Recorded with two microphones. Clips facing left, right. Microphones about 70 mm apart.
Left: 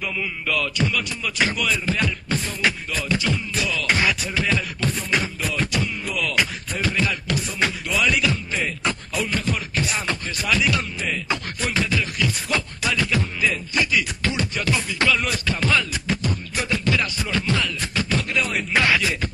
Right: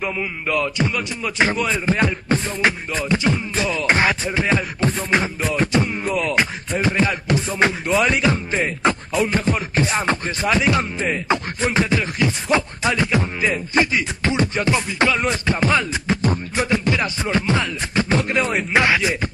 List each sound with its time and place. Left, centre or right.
0.0 s speech: right